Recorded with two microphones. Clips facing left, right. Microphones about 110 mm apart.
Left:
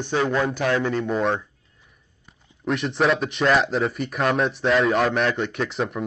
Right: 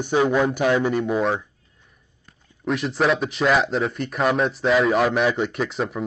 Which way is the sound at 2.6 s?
Centre (ahead or behind).